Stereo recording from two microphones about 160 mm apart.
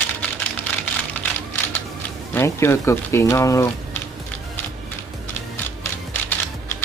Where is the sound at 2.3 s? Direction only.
15° left (ahead or behind).